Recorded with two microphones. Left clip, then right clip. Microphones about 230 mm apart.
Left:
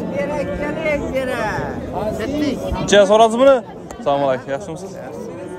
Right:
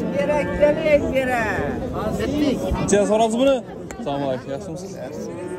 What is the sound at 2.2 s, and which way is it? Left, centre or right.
Speech, centre.